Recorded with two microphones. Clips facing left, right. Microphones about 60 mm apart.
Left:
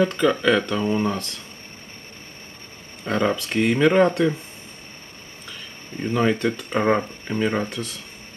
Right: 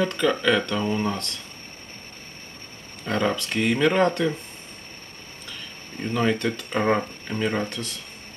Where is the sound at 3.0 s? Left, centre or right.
Centre.